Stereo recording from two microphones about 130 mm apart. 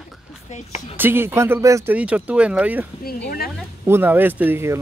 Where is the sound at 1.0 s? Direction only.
15° right (ahead or behind).